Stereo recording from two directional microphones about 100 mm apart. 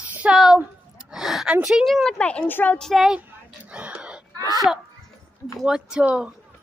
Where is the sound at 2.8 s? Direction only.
Centre (ahead or behind).